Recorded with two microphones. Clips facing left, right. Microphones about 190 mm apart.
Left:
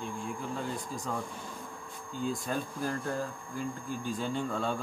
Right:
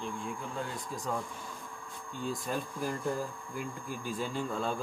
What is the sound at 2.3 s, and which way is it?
Speech, 5° right (ahead or behind).